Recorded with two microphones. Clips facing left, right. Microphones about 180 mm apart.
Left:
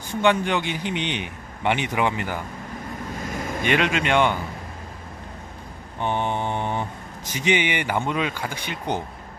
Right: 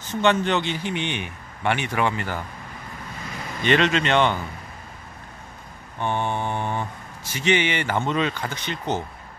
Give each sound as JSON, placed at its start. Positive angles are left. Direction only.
{"t": 0.1, "sound": "speech", "side_deg": 10}
{"t": 3.6, "sound": "speech", "side_deg": 10}
{"t": 5.9, "sound": "speech", "side_deg": 20}